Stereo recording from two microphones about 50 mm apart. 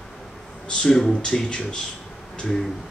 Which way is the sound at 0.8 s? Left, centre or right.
Centre.